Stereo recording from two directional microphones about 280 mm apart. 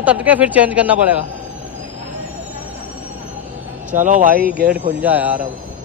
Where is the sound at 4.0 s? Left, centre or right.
Right.